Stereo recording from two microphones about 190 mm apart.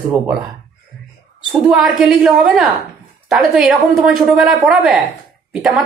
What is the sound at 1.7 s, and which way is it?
A woman's voice, centre (ahead or behind).